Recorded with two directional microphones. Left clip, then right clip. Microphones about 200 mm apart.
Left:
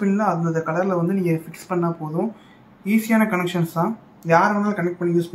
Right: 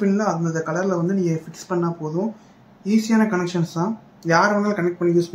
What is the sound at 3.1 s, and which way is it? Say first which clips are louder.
Speech: left 2 dB; centre (ahead or behind).